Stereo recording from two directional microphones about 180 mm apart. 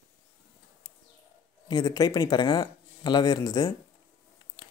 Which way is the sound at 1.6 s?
20° left (ahead or behind).